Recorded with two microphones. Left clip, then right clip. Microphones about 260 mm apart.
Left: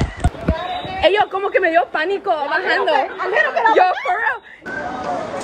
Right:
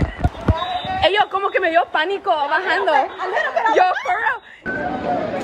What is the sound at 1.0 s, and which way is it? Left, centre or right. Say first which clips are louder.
A woman's voice: left 2 dB; centre.